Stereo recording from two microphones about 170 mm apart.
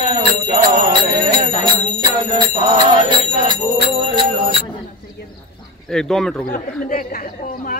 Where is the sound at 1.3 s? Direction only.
25° right (ahead or behind).